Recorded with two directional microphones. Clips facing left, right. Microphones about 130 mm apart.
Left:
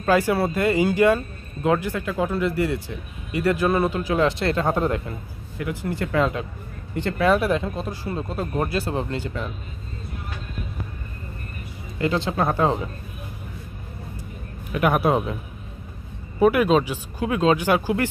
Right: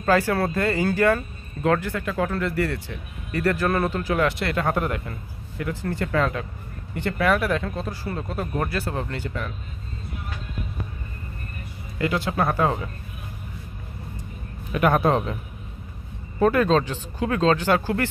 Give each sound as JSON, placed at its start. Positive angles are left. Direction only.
{"t": 0.1, "sound": "speech", "side_deg": 15}
{"t": 4.2, "sound": "speech", "side_deg": 25}
{"t": 5.7, "sound": "speech", "side_deg": 15}
{"t": 12.1, "sound": "speech", "side_deg": 25}
{"t": 14.9, "sound": "speech", "side_deg": 10}
{"t": 16.3, "sound": "speech", "side_deg": 10}